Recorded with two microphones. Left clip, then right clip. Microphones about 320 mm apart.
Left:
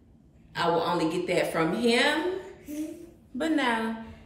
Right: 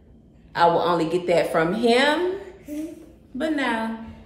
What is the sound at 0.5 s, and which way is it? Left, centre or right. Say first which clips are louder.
Speech: right 7 dB; centre.